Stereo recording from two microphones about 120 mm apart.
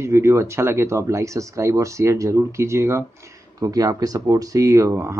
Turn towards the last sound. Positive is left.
turn(degrees=-20)  # may be behind; listen again after turning